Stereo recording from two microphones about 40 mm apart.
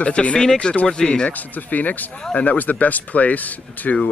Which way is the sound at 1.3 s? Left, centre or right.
Left.